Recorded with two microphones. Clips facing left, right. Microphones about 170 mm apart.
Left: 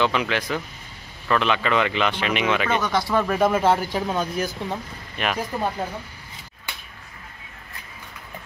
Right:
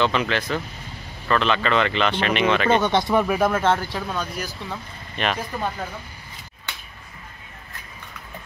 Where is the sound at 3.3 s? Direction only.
Centre (ahead or behind); by 4.3 s 20° left (ahead or behind).